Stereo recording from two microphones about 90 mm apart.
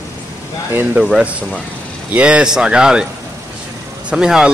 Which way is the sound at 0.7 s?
20° right (ahead or behind).